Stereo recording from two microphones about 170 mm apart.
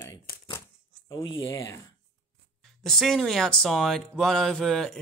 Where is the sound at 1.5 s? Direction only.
20° left (ahead or behind).